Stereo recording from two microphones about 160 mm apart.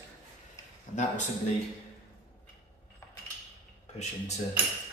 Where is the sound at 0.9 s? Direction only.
55° left (ahead or behind).